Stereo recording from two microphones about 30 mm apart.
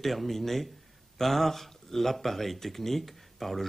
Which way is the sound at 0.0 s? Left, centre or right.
Centre.